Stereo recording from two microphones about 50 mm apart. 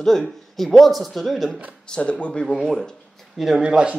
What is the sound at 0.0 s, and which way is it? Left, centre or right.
Speech, centre.